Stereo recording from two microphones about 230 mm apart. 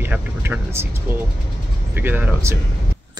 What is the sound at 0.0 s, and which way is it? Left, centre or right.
Speech, centre.